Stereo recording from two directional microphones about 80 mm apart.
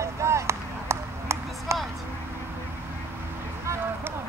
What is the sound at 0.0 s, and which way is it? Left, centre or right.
Run, right.